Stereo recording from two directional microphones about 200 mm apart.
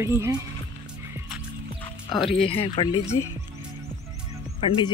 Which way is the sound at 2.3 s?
30° left (ahead or behind).